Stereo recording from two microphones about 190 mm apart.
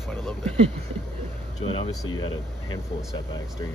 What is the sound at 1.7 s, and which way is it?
Speech, 25° left (ahead or behind).